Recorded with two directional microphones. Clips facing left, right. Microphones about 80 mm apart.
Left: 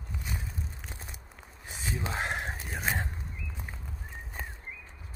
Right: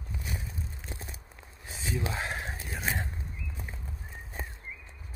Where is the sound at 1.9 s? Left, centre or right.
Left.